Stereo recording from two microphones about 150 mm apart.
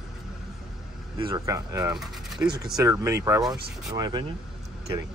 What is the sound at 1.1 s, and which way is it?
Speech, 35° right (ahead or behind).